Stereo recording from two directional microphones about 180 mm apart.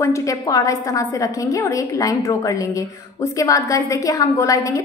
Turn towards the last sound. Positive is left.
turn(degrees=15)  # may be behind; listen again after turning